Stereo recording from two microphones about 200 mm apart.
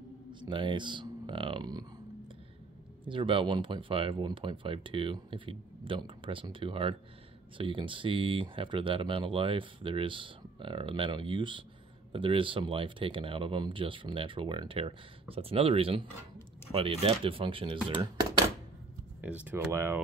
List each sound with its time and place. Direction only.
0.3 s speech: 25° right (ahead or behind)
3.1 s speech: 25° right (ahead or behind)
19.2 s speech: 10° right (ahead or behind)